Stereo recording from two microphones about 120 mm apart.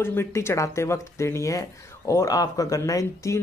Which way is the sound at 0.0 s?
20° left (ahead or behind).